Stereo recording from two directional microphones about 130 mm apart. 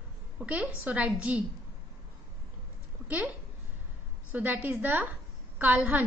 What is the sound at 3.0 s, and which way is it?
Speech, 10° right (ahead or behind).